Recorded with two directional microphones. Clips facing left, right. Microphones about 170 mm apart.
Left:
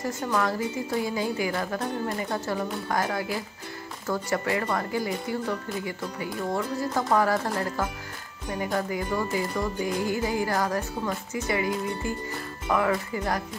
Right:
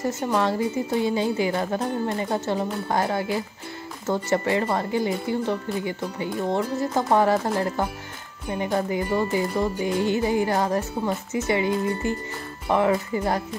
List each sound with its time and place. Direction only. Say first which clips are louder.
0.0 s speech: right 3 dB; 30° right (ahead or behind)